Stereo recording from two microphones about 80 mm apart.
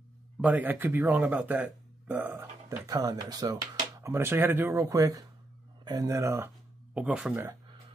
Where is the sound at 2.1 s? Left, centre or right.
Right.